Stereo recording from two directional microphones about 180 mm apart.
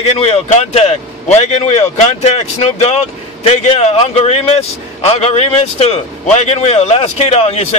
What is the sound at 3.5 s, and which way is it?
Speech, 35° left (ahead or behind).